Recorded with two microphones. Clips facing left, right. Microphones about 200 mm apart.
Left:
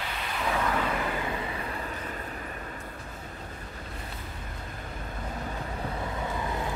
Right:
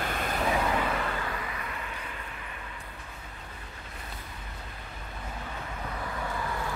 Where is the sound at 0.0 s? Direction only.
50° right (ahead or behind).